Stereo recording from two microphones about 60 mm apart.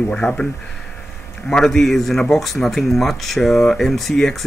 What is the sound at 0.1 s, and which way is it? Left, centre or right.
Speech, centre.